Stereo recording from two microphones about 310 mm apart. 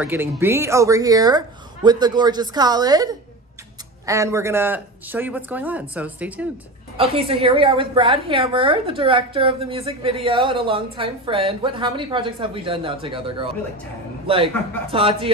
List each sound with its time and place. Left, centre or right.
0.0 s a woman's voice: centre
7.0 s a woman's voice: centre